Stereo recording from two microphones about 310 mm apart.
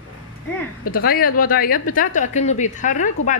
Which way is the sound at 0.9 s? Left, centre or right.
Left.